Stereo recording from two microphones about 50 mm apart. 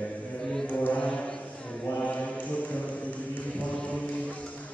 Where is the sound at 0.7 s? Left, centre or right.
Left.